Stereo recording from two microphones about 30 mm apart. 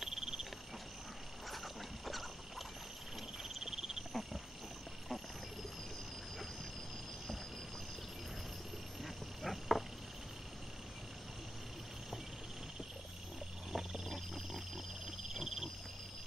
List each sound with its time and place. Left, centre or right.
0.0 s cricket: centre
1.5 s dog: centre
3.5 s cricket: centre
4.1 s wild animals: centre
9.0 s frog: centre
13.7 s a sound: centre
14.1 s wild animals: centre
15.0 s cricket: centre